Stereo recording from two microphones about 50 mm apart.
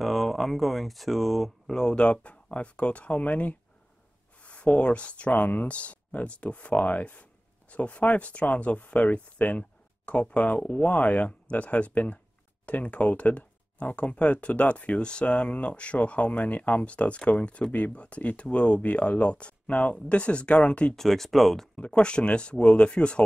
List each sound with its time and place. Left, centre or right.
0.0 s speech: centre
1.8 s speech: centre
20.9 s speech: centre
21.9 s speech: left